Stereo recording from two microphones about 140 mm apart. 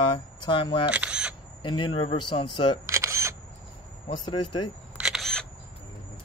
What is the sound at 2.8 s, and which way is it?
Single-lens reflex camera, 20° right (ahead or behind).